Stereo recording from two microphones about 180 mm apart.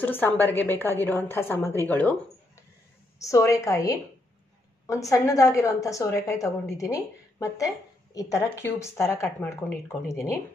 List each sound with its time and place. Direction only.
0.0 s a woman's voice: 10° left (ahead or behind)
3.2 s a woman's voice: 15° left (ahead or behind)